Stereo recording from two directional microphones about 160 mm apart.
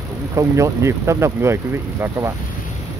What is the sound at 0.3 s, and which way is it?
Speech, 20° right (ahead or behind).